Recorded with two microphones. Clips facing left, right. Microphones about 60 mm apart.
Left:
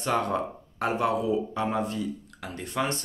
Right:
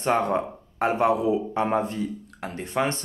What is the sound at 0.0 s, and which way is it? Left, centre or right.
Speech, right.